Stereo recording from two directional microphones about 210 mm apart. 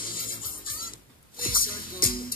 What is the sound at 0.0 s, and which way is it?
Music, 45° left (ahead or behind).